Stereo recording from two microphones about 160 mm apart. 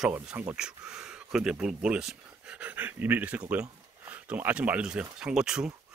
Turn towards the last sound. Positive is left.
turn(degrees=-5)  # may be behind; listen again after turning